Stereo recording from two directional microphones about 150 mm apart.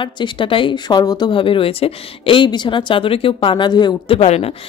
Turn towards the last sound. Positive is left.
turn(degrees=45)  # may be behind; listen again after turning